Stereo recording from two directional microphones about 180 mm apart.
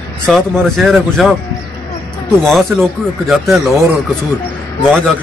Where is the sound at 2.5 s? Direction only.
Centre (ahead or behind).